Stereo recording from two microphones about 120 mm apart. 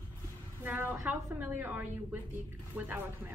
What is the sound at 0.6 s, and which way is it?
A woman's voice, 15° right (ahead or behind).